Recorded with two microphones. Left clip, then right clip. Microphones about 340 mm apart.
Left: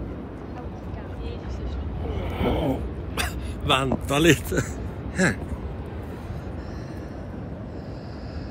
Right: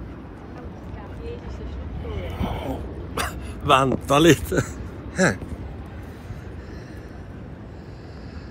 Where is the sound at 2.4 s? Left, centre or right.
Left.